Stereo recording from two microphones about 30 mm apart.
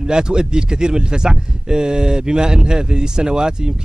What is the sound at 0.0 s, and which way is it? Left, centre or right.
Speech, right.